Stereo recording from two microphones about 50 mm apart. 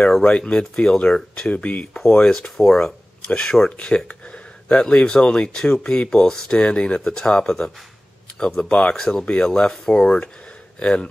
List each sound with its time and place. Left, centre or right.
0.2 s speech: left
1.5 s speech: left
2.1 s speech: centre
6.5 s speech: left